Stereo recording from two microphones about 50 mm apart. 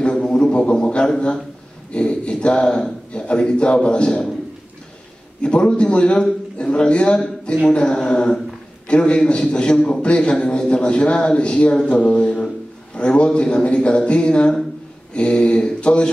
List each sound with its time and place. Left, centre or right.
0.0 s music: centre
1.9 s a man's voice: left
5.4 s a man's voice: left